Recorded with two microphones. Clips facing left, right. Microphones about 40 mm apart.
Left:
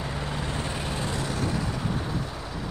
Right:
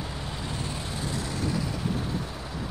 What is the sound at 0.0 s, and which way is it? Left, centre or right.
Vehicle, left.